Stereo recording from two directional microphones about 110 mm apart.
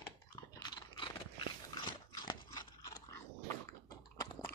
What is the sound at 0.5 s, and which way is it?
Crunch, 40° left (ahead or behind).